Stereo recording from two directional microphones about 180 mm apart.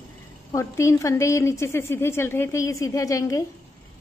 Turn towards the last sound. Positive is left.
turn(degrees=20)  # may be behind; listen again after turning